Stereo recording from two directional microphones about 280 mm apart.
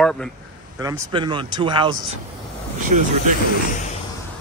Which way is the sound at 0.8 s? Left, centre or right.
Centre.